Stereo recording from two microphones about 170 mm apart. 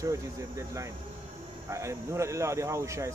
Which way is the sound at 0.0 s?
15° right (ahead or behind).